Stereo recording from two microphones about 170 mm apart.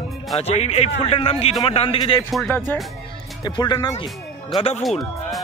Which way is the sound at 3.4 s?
25° left (ahead or behind).